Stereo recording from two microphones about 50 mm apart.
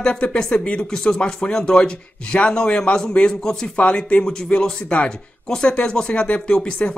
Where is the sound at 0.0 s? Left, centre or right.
Centre.